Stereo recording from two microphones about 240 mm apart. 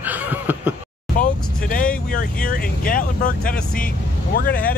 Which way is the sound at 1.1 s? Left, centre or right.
Left.